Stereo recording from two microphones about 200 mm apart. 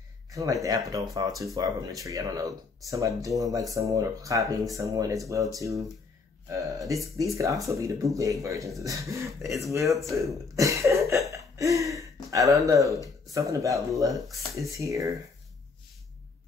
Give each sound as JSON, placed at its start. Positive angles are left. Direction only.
{"t": 0.3, "sound": "speech", "side_deg": -15}
{"t": 10.1, "sound": "cough", "side_deg": -15}
{"t": 13.3, "sound": "speech", "side_deg": -15}